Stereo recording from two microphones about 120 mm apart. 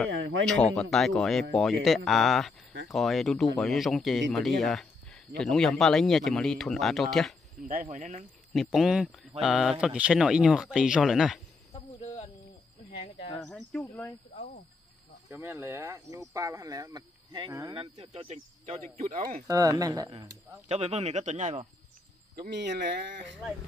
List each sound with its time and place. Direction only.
0.0 s speech: 5° left (ahead or behind)
7.6 s speech: 90° right
8.5 s speech: centre (ahead or behind)
12.0 s cricket: 50° left (ahead or behind)
13.4 s speech: 5° left (ahead or behind)
15.5 s speech: 20° right (ahead or behind); by 17.5 s 35° right (ahead or behind)
17.6 s speech: 50° right (ahead or behind)
19.2 s speech: 30° right (ahead or behind)
20.6 s speech: 70° right (ahead or behind)